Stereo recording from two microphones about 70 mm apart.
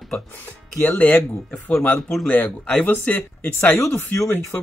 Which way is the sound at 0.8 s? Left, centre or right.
Left.